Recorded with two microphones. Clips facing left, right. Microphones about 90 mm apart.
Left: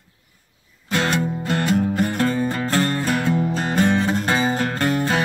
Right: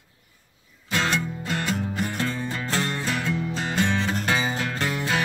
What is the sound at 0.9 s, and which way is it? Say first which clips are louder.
Music: left 4 dB; 50° left (ahead or behind).